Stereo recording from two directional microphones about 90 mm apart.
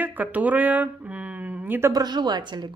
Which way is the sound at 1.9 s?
50° right (ahead or behind).